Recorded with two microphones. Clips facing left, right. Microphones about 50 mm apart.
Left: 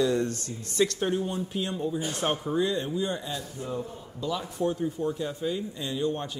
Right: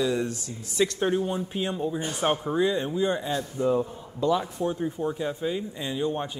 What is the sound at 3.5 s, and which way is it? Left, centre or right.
Speech, right.